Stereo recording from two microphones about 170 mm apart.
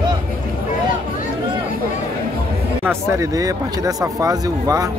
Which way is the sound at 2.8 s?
20° right (ahead or behind).